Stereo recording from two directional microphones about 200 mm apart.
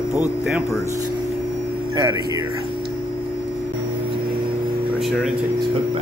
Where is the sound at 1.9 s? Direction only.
20° right (ahead or behind).